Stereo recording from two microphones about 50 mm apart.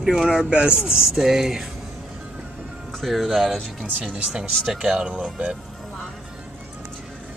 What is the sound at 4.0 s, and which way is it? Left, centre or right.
Speech, centre.